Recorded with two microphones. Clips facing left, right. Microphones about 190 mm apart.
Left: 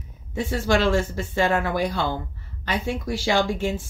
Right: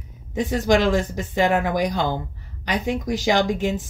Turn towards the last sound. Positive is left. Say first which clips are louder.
# right 2 dB
turn(degrees=-20)  # may be behind; listen again after turning